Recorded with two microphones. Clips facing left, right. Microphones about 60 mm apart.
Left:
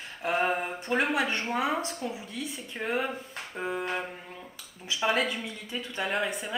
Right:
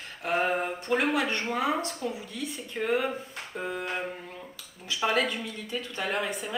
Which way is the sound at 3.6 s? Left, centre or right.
Centre.